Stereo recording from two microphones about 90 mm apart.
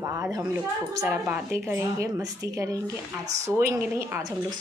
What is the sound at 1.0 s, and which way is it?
Speech, 15° right (ahead or behind).